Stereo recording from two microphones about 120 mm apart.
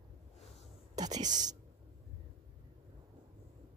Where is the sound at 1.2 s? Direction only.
90° right.